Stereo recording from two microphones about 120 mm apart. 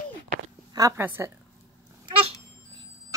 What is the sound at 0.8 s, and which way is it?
Speech, 30° right (ahead or behind).